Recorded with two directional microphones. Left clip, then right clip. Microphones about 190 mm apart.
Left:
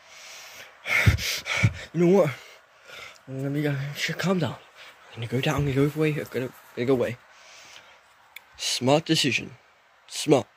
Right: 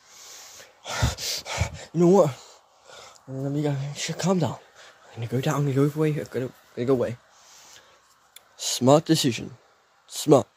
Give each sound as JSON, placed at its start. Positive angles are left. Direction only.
{"t": 0.1, "sound": "snort", "side_deg": -15}
{"t": 0.8, "sound": "a sound", "side_deg": 0}
{"t": 1.2, "sound": "speech", "side_deg": -10}
{"t": 2.3, "sound": "a sound", "side_deg": 0}
{"t": 3.5, "sound": "speech", "side_deg": -5}
{"t": 8.4, "sound": "speech", "side_deg": -15}